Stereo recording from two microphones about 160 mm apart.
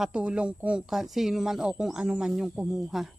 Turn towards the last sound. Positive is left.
turn(degrees=0)  # may be behind; listen again after turning